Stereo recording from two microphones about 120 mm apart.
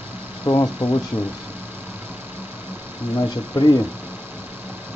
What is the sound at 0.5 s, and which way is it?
Speech, 35° left (ahead or behind).